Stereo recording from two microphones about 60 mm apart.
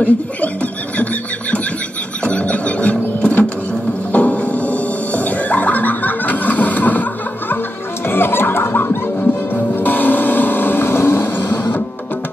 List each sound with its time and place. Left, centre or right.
0.0 s speech: left
2.2 s music: left
8.1 s a sound: left
9.8 s vehicle: left